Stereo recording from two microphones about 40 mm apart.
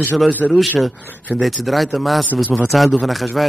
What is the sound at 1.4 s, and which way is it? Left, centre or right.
A man's voice, centre.